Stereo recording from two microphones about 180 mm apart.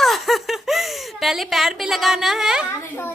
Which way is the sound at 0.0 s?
Centre (ahead or behind).